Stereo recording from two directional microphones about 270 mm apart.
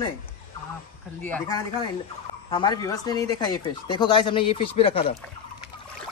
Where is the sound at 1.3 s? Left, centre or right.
Centre.